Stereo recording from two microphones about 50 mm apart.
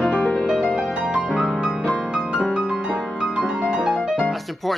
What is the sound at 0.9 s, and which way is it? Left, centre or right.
Music, centre.